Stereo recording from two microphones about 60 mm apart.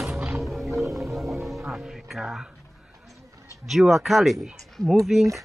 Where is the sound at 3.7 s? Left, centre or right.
Centre.